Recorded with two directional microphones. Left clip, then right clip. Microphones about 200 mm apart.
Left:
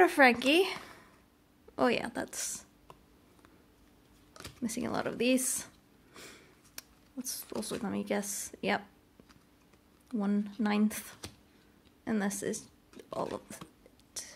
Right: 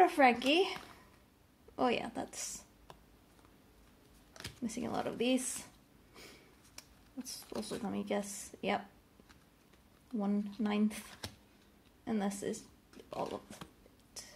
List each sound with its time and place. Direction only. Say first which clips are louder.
0.0 s speech: left 3 dB; 30° left (ahead or behind)
1.8 s speech: left 4 dB; 30° left (ahead or behind)
4.6 s speech: left 4 dB; 25° left (ahead or behind)
6.1 s a sound: left 4 dB; 30° left (ahead or behind)
7.6 s speech: left 4 dB; 30° left (ahead or behind)
10.1 s speech: left 3 dB; 30° left (ahead or behind)
14.2 s a sound: left 6 dB; 30° left (ahead or behind)